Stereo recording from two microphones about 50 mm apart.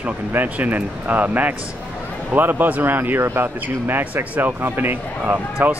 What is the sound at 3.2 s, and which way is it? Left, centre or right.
Speech, right.